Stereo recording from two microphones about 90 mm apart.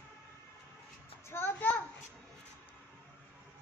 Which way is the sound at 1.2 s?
25° left (ahead or behind).